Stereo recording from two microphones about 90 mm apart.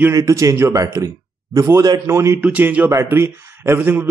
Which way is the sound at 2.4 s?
15° right (ahead or behind).